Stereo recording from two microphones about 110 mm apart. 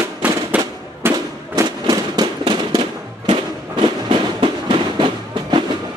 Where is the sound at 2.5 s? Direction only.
45° right (ahead or behind).